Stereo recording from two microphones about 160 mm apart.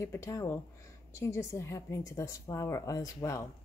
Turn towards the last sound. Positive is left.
turn(degrees=20)  # may be behind; listen again after turning